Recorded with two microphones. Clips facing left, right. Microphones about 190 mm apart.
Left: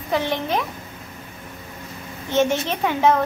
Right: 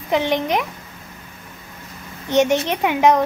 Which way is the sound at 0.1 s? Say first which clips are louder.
Right 3 dB; 15° right (ahead or behind).